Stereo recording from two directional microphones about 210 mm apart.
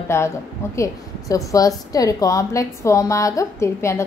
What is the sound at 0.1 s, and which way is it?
Speech, 10° left (ahead or behind).